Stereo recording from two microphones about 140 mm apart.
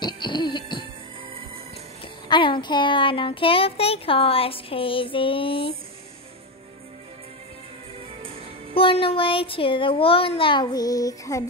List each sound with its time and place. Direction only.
0.0 s music: 35° left (ahead or behind)
2.2 s speech: 35° left (ahead or behind)
8.7 s speech: 40° left (ahead or behind); by 11.4 s 25° left (ahead or behind)